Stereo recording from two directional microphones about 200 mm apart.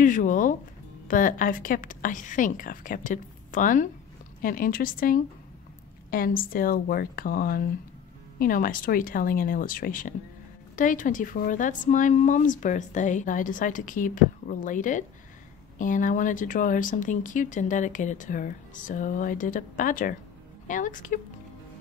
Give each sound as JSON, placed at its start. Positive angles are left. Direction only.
{"t": 0.0, "sound": "a woman's voice", "side_deg": 40}